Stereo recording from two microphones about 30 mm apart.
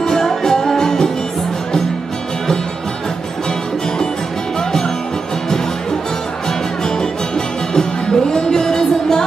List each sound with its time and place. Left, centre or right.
0.0 s music: centre
4.6 s music: centre
6.8 s music: centre